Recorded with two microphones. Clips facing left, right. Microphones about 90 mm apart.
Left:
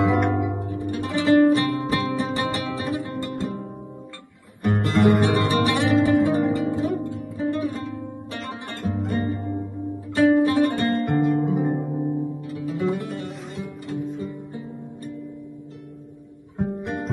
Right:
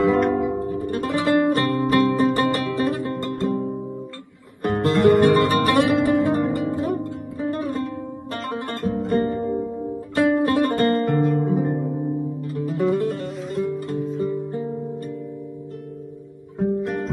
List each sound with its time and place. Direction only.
0.0 s music: 15° left (ahead or behind)
0.9 s music: 60° right (ahead or behind)
4.6 s music: 60° right (ahead or behind)
6.3 s music: 15° left (ahead or behind)
6.7 s music: 55° right (ahead or behind)
10.8 s guitar: 60° right (ahead or behind)
11.2 s harp: 15° left (ahead or behind)
12.4 s music: 60° right (ahead or behind)
16.5 s music: 15° left (ahead or behind)